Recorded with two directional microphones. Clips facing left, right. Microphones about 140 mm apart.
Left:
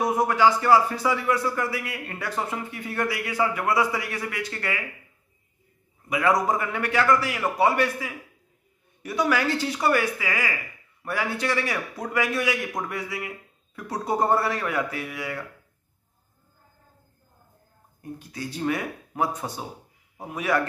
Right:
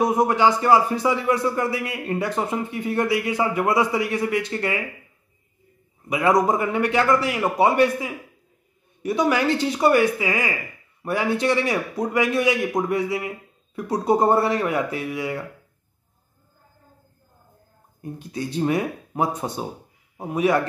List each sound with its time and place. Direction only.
0.0 s speech: 20° right (ahead or behind)
6.0 s speech: 20° right (ahead or behind)
18.3 s speech: 20° right (ahead or behind)